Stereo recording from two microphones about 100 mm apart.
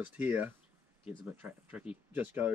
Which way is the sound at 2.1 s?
15° right (ahead or behind).